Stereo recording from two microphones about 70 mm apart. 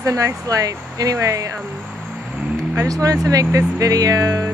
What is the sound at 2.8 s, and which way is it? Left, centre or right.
Speech, right.